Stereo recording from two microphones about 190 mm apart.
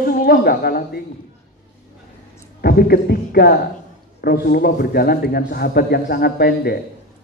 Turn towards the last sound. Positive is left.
turn(degrees=55)  # may be behind; listen again after turning